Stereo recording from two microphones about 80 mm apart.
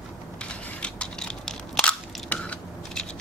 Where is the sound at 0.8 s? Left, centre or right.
Centre.